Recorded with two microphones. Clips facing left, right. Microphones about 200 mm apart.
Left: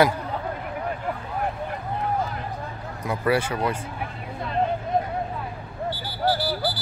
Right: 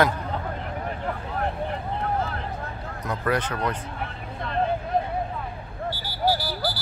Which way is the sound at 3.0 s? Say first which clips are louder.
Left 3 dB; 10° left (ahead or behind).